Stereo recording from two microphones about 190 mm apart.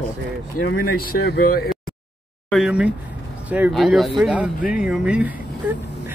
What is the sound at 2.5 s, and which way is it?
Speech, 5° right (ahead or behind).